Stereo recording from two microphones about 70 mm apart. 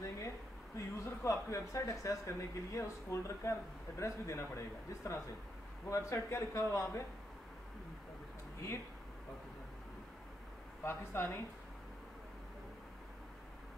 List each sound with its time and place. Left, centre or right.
0.7 s speech: left
10.8 s speech: left